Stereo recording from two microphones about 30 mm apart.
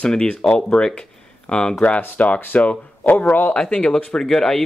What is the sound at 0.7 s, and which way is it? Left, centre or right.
Speech, left.